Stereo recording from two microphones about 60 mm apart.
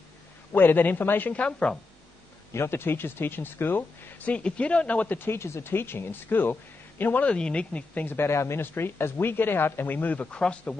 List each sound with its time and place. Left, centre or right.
0.5 s speech: left
1.3 s speech: centre
2.5 s speech: left
4.3 s speech: centre
5.2 s speech: left
7.2 s speech: centre
8.2 s speech: left; by 10.8 s centre